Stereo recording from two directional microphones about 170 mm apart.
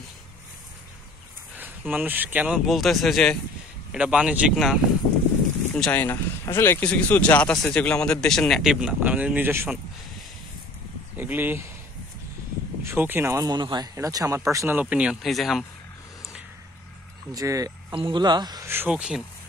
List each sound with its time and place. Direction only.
1.6 s speech: 10° right (ahead or behind)
5.7 s speech: 10° left (ahead or behind); by 9.8 s 10° right (ahead or behind)
11.1 s speech: 10° right (ahead or behind)
12.8 s speech: 10° right (ahead or behind)
17.3 s speech: 20° right (ahead or behind)
18.7 s speech: 10° right (ahead or behind)